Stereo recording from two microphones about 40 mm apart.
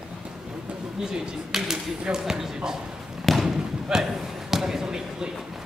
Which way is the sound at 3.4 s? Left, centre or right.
Centre.